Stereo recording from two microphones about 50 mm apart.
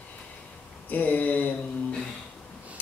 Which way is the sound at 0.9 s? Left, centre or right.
Left.